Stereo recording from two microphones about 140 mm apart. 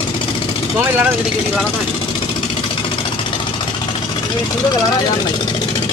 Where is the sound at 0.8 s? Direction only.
15° right (ahead or behind).